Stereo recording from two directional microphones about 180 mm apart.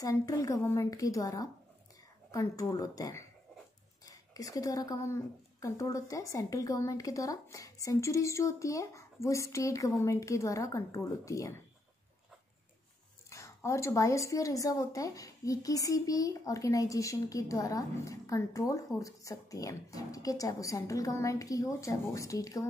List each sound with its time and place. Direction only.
0.0 s a woman's voice: 20° left (ahead or behind)
13.3 s a woman's voice: 15° left (ahead or behind)